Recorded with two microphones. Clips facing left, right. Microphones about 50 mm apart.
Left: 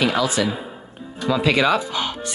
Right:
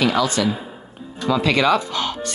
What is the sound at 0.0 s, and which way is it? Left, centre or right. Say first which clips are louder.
Speech: right 1 dB; centre.